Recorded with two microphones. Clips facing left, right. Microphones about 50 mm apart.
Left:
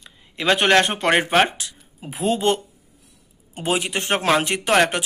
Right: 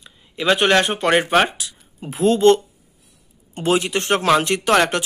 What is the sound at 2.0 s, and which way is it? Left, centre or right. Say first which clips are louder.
Speech: right 6 dB; centre.